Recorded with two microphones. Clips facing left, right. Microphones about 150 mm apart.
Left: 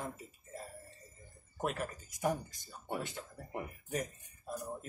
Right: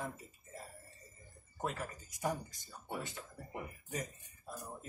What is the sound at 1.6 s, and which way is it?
Speech, 75° left (ahead or behind).